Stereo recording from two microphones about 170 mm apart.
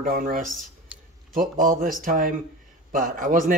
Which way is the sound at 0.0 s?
55° right (ahead or behind).